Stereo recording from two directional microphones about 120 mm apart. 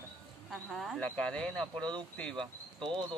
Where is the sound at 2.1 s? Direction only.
5° left (ahead or behind).